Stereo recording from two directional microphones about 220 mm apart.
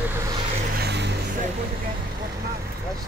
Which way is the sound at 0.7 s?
50° right (ahead or behind).